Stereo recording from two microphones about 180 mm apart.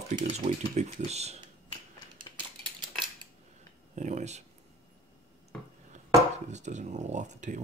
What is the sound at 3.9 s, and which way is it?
Speech, 40° right (ahead or behind).